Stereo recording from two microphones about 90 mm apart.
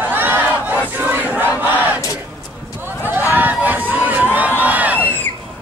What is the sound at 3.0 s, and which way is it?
Crowd, 20° right (ahead or behind).